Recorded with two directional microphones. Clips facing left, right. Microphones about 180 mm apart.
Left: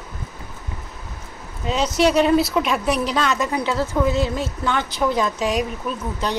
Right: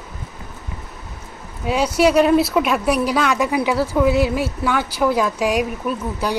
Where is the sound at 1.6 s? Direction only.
10° right (ahead or behind).